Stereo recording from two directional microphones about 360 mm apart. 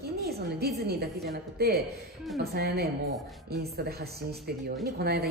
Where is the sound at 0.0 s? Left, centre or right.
Right.